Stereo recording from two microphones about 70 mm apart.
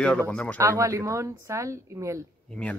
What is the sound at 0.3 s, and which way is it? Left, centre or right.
Speech, centre.